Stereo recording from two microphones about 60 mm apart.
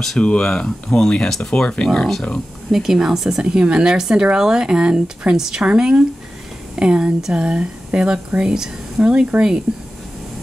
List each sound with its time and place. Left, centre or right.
0.2 s speech: centre
2.0 s speech: centre
2.7 s speech: centre